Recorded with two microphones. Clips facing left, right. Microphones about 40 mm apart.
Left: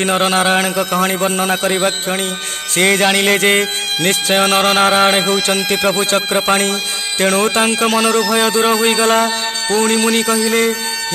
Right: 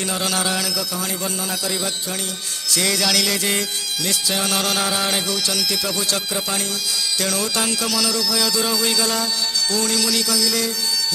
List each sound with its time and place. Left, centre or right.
0.0 s music: left
7.2 s speech: left